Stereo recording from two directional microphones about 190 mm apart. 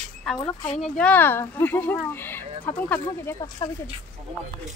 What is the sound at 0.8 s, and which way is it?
Speech, 5° left (ahead or behind).